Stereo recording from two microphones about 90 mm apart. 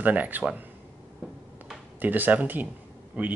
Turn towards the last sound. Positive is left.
turn(degrees=-20)  # may be behind; listen again after turning